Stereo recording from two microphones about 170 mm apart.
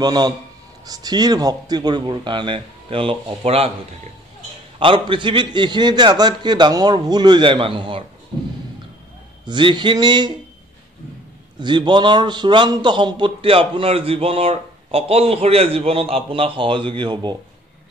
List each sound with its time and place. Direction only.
0.0 s a man's voice: 25° right (ahead or behind)
4.7 s a man's voice: 30° right (ahead or behind)
9.5 s a man's voice: 30° right (ahead or behind)
11.6 s a man's voice: 25° right (ahead or behind)